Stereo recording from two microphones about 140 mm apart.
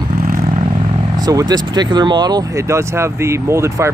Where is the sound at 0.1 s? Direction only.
50° right (ahead or behind).